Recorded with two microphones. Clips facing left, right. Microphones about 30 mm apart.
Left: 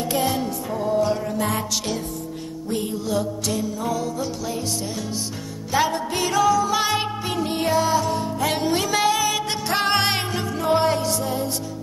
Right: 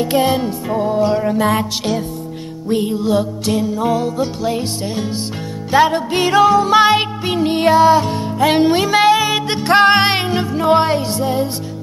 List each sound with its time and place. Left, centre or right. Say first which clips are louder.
0.0 s music: right 7 dB; right
2.7 s music: right 8 dB; right